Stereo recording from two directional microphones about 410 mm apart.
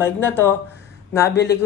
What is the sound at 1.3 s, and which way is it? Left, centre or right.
Speech, left.